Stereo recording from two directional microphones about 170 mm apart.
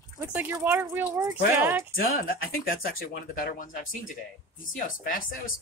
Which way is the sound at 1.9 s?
55° left (ahead or behind).